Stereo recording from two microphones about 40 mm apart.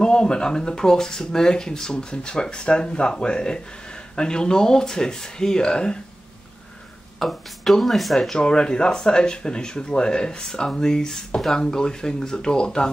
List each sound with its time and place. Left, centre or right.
0.0 s speech: centre
7.2 s speech: centre
8.3 s speech: left